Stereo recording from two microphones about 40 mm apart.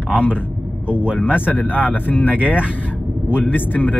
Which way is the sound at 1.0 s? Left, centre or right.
Right.